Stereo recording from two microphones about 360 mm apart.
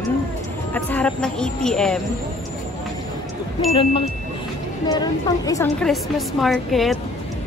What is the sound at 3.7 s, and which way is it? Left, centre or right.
A woman's voice, centre.